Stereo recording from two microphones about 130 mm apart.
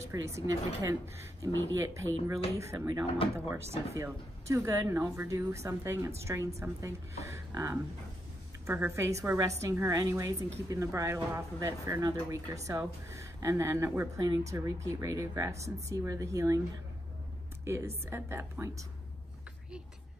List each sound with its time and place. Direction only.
0.0 s a woman's voice: 25° right (ahead or behind)
17.6 s a woman's voice: 20° right (ahead or behind)